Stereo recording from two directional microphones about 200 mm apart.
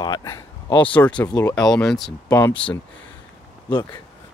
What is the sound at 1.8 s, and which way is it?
Speech, centre (ahead or behind).